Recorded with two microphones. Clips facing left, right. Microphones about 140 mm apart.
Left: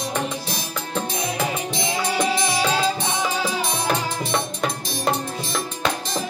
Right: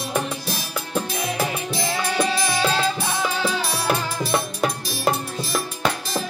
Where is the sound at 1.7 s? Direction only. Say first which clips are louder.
Even; 20° left (ahead or behind).